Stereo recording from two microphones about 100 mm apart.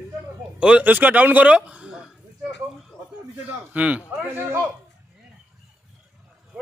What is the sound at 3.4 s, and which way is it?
A man's voice, 15° right (ahead or behind).